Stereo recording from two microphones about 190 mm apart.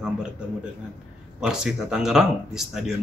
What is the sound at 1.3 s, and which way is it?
A man's voice, 5° right (ahead or behind).